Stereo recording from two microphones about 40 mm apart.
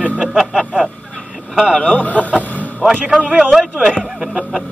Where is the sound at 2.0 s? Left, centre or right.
Left.